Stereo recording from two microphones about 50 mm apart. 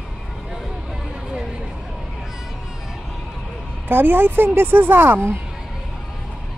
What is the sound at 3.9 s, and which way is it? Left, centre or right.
A woman's voice, right.